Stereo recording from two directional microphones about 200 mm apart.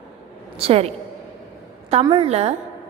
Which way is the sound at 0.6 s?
30° right (ahead or behind).